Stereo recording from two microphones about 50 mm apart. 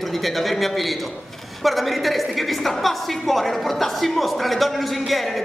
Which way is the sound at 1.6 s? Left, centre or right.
Centre.